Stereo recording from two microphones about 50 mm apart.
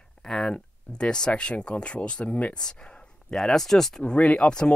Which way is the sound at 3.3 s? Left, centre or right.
Centre.